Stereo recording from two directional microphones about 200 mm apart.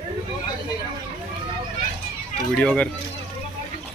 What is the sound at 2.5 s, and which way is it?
Speech, 5° left (ahead or behind).